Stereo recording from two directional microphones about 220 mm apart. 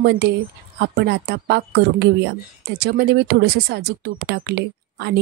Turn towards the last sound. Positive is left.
turn(degrees=-50)  # may be behind; listen again after turning